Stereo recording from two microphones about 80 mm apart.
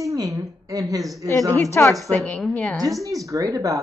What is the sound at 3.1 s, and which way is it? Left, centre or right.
Speech, right.